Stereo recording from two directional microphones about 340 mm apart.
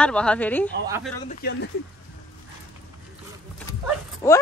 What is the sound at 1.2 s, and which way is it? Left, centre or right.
Speech, left.